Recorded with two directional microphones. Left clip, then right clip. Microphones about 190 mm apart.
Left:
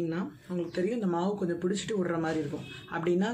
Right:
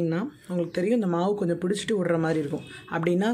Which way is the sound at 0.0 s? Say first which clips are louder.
Right 5 dB; 45° right (ahead or behind).